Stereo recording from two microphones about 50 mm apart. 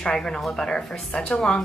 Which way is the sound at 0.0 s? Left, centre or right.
Centre.